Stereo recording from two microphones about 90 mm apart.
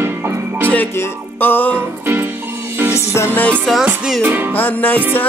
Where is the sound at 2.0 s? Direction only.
25° right (ahead or behind).